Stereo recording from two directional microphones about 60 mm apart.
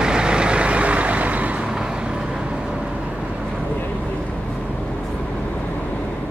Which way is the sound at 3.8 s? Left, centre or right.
Left.